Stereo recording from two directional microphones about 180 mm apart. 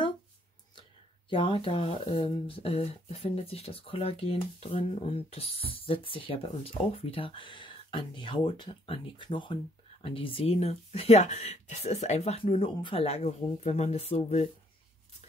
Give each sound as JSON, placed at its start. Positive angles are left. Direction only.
{"t": 1.3, "sound": "speech", "side_deg": 30}